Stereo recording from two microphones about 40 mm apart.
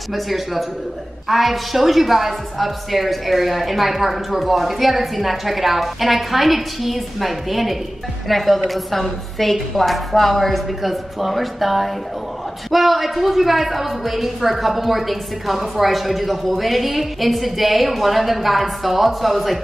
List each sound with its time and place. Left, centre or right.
0.1 s a woman's voice: centre